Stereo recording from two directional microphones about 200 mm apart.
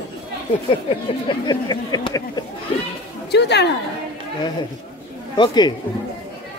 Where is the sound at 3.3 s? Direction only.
55° left (ahead or behind).